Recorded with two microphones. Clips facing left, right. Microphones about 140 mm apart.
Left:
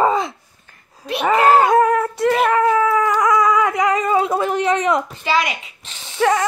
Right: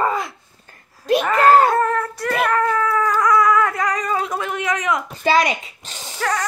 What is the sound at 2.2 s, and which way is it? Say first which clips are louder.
Cat: left 4 dB; 20° left (ahead or behind).